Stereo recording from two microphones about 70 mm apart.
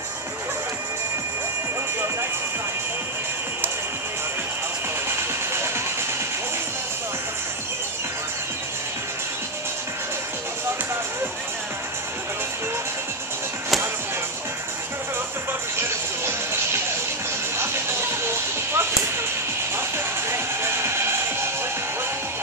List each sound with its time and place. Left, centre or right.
15.8 s music: right
20.2 s music: right